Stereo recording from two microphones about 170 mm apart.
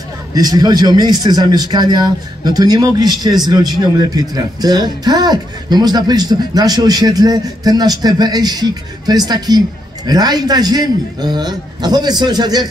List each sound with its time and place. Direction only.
0.3 s speech: 20° right (ahead or behind)